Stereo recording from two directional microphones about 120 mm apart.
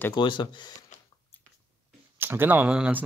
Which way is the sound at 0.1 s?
40° left (ahead or behind).